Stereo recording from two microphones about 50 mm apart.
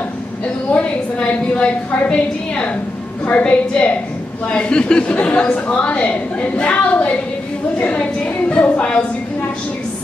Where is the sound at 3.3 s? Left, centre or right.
Left.